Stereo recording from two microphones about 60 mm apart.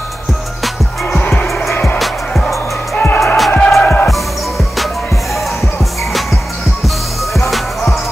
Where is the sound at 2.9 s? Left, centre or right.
Left.